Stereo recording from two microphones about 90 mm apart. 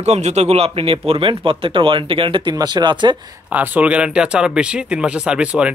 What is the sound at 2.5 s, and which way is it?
Speech, 50° right (ahead or behind).